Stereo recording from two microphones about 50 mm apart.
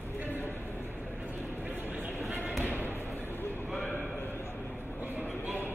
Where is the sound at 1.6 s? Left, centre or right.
Right.